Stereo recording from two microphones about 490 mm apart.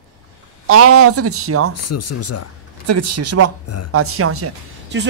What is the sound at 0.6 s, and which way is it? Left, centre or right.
Speech, right.